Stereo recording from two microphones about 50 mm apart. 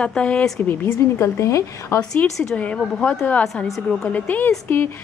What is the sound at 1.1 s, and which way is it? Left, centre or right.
Speech, left.